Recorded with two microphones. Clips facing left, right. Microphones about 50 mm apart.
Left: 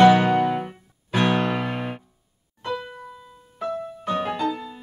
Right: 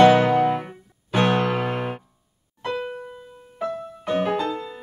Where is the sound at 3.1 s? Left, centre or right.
Right.